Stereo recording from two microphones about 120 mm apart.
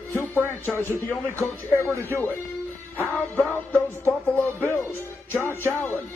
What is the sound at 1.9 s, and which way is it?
Speech, 25° right (ahead or behind).